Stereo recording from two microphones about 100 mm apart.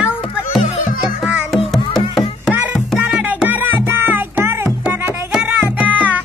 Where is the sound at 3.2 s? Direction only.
15° right (ahead or behind).